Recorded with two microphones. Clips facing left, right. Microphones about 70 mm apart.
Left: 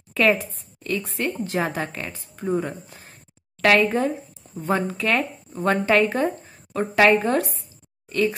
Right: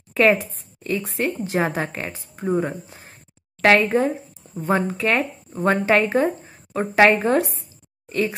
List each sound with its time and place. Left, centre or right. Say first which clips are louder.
0.3 s a woman's voice: right 2 dB; centre